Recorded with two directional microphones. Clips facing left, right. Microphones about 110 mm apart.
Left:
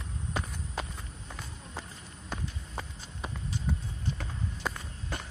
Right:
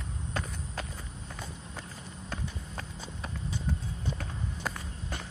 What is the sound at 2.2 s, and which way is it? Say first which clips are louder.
Run: left 1 dB; 5° left (ahead or behind).